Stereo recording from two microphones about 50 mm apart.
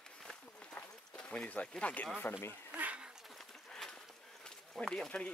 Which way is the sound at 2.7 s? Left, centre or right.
Right.